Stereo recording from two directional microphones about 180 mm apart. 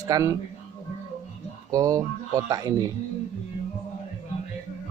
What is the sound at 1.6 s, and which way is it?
A man's voice, 20° right (ahead or behind).